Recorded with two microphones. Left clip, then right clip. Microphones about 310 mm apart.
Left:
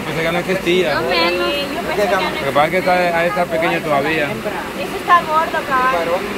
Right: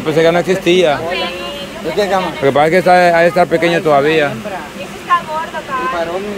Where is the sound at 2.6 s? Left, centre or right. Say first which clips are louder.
Right 5 dB; right.